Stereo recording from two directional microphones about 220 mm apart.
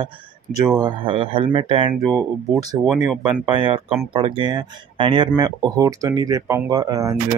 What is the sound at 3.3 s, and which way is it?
Speech, 25° right (ahead or behind).